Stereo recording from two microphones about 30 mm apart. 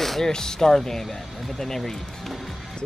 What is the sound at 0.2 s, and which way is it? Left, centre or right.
Speech, left.